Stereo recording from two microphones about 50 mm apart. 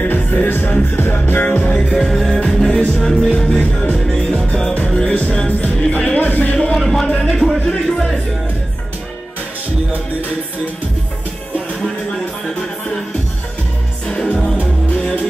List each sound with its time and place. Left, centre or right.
0.0 s music: left
2.0 s music: centre
3.3 s music: centre
5.9 s music: left
6.5 s a sound: centre
6.8 s a sound: centre
7.2 s music: centre
14.0 s music: centre